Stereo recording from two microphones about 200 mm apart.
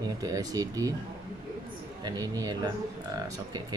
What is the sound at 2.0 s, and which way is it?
Speech, 20° right (ahead or behind).